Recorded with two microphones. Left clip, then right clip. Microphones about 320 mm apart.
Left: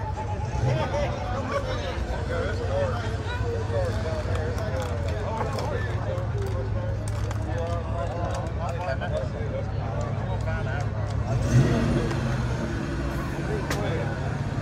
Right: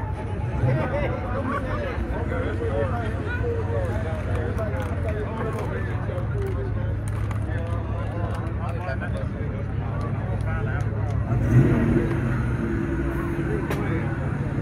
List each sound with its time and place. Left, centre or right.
11.5 s vehicle: left